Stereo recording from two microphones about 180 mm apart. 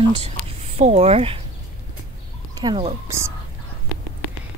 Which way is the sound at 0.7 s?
40° right (ahead or behind).